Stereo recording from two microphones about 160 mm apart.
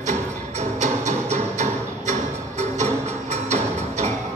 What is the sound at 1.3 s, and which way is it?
Music, 50° right (ahead or behind).